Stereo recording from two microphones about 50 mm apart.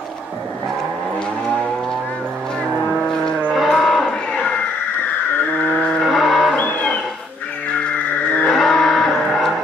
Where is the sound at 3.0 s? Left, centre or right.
Centre.